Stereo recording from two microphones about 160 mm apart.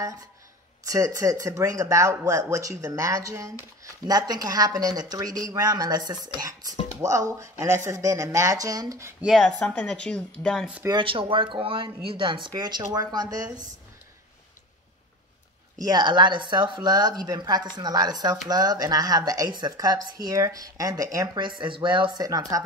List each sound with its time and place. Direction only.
0.0 s speech: 20° right (ahead or behind)
9.2 s speech: centre (ahead or behind)
10.9 s speech: 30° right (ahead or behind)
15.8 s speech: 25° right (ahead or behind)